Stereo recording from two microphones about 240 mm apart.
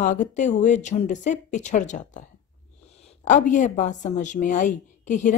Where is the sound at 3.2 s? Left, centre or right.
Left.